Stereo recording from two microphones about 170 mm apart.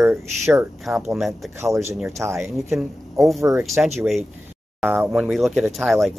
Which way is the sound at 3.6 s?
Centre (ahead or behind).